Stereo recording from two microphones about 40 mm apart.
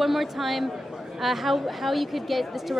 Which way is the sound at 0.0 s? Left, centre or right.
Centre.